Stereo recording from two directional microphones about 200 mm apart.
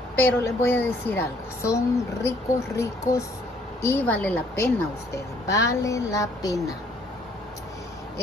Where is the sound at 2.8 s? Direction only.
15° left (ahead or behind).